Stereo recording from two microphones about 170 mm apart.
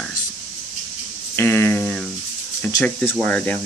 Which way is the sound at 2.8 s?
5° left (ahead or behind).